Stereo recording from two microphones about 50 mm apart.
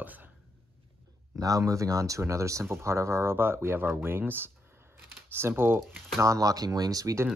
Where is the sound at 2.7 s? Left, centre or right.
Right.